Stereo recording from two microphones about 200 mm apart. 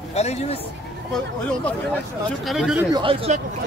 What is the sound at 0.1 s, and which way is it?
Speech, 35° left (ahead or behind).